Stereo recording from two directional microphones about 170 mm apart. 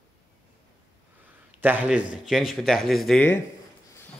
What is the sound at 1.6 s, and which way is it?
Speech, 10° right (ahead or behind).